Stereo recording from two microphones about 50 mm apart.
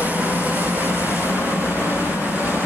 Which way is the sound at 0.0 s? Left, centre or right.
Right.